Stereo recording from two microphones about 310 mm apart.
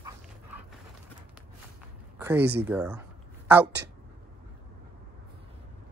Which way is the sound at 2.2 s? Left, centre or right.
Centre.